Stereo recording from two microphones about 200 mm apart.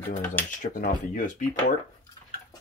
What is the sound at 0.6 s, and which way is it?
Speech, 40° left (ahead or behind).